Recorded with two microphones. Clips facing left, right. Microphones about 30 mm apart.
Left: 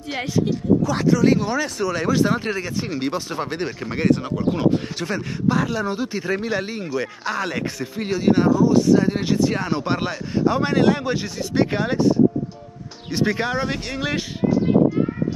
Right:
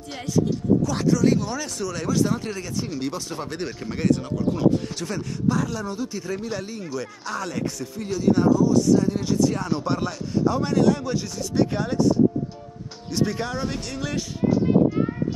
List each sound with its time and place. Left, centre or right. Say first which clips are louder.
0.5 s speech: left 2 dB; centre